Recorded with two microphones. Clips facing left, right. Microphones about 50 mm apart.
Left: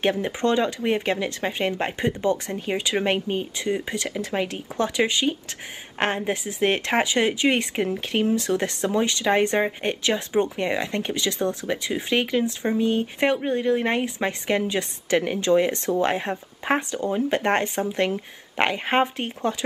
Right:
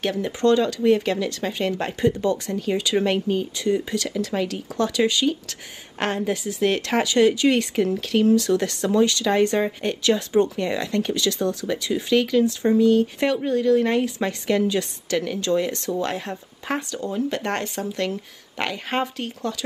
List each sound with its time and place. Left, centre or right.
0.0 s speech: left